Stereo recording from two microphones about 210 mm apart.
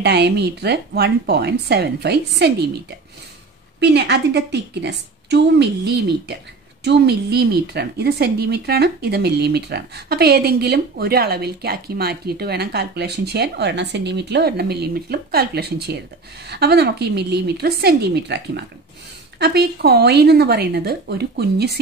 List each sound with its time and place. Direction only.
0.0 s a woman's voice: 50° right (ahead or behind)
3.8 s a woman's voice: 55° right (ahead or behind)